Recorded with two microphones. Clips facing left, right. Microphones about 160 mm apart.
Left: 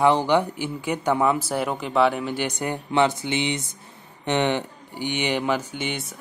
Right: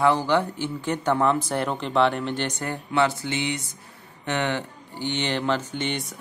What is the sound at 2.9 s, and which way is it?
Mantra, 20° left (ahead or behind).